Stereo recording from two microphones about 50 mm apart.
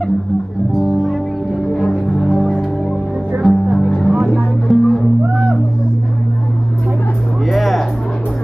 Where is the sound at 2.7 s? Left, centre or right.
Centre.